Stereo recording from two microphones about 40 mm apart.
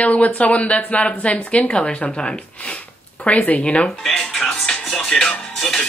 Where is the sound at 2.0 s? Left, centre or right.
Centre.